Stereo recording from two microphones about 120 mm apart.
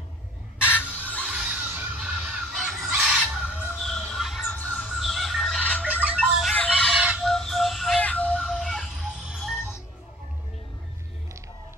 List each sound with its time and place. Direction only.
0.6 s chicken: 15° left (ahead or behind)
1.2 s fowl: 10° right (ahead or behind)
3.7 s a sound: 5° left (ahead or behind)
4.5 s bird: 10° left (ahead or behind)
4.9 s bird: centre (ahead or behind)
5.6 s music: 15° left (ahead or behind)
5.9 s music: 10° right (ahead or behind)
6.5 s chicken: 10° left (ahead or behind)
6.9 s fowl: 5° right (ahead or behind)
8.0 s music: 10° left (ahead or behind)
8.4 s music: centre (ahead or behind)